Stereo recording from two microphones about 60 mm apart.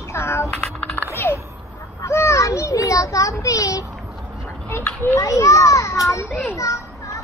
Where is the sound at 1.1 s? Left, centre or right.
Left.